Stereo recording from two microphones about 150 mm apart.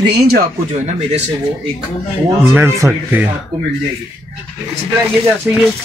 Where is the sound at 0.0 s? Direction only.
90° right.